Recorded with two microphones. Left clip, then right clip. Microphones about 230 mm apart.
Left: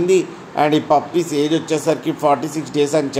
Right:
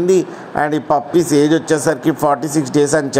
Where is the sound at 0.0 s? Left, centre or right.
Right.